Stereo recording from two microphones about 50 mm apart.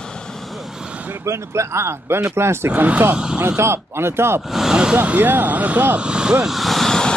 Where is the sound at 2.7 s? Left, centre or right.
Right.